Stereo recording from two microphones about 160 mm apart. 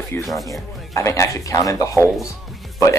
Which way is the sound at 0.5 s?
20° left (ahead or behind).